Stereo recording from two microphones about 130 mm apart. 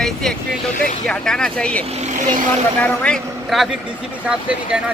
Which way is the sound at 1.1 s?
5° left (ahead or behind).